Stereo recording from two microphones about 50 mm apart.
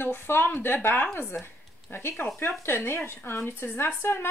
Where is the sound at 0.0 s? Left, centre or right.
Left.